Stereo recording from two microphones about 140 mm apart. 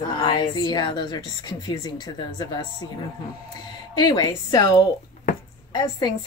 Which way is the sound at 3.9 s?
30° left (ahead or behind).